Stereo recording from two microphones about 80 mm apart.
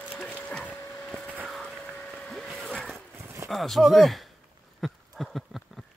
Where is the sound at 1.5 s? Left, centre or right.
Centre.